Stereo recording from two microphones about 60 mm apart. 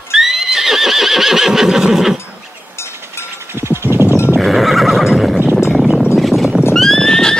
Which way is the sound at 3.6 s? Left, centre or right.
Right.